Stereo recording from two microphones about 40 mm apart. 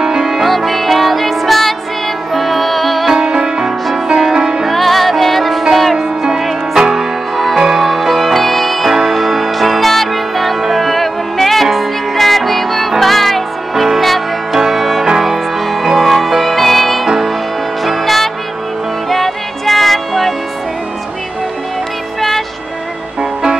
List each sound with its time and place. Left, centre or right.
0.0 s music: centre
0.4 s music: centre
3.2 s music: centre
4.6 s music: centre
7.3 s music: centre